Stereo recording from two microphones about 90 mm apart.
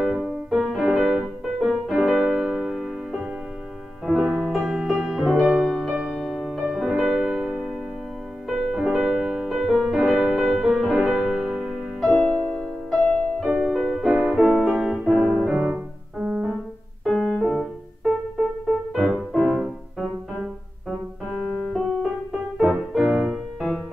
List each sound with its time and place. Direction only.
0.0 s music: 5° right (ahead or behind)
12.1 s music: 10° left (ahead or behind)
13.5 s music: 10° right (ahead or behind)
14.3 s piano: 5° right (ahead or behind)
17.0 s music: centre (ahead or behind)
19.4 s music: 5° right (ahead or behind)
21.7 s music: 5° right (ahead or behind)